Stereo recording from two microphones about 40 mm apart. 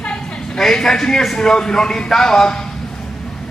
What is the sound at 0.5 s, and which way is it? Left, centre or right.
A man's voice, centre.